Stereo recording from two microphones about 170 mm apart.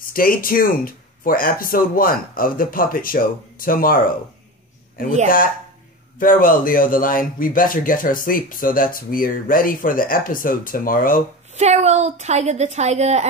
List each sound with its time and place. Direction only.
0.0 s speech: 55° left (ahead or behind)
11.5 s a woman's voice: 40° right (ahead or behind)